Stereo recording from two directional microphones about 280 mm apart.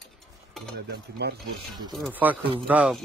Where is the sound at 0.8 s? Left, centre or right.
Right.